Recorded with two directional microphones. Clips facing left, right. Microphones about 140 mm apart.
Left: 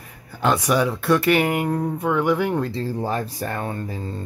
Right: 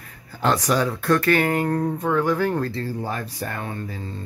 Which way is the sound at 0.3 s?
10° left (ahead or behind).